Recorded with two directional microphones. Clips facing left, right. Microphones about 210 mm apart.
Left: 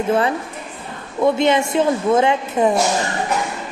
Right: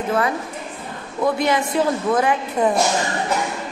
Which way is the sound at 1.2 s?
25° left (ahead or behind).